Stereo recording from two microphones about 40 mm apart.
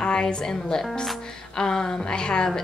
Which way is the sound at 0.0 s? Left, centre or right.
Left.